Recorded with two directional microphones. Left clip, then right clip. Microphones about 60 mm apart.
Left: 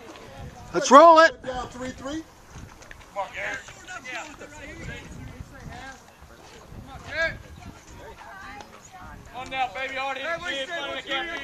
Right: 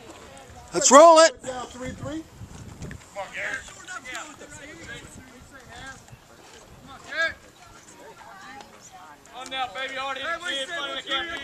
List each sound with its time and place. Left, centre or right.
0.7 s a man's voice: centre
2.0 s speech: left
3.2 s a sound: right
6.9 s boat: right
8.3 s a sound: right
9.3 s a man's voice: right